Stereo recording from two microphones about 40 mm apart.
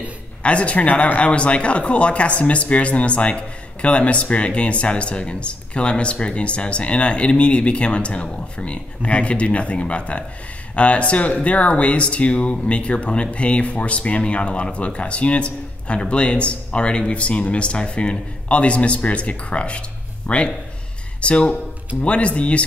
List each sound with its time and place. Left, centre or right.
0.4 s speech: left